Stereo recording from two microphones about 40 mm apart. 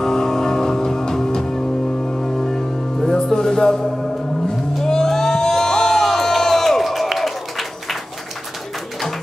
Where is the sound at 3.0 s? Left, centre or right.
Centre.